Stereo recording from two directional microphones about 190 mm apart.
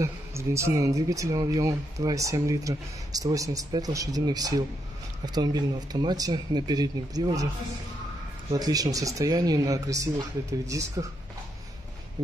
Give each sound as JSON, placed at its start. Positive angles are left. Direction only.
{"t": 0.0, "sound": "speech", "side_deg": -15}
{"t": 8.5, "sound": "speech", "side_deg": -20}